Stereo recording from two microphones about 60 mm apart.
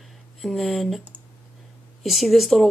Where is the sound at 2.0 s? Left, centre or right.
Centre.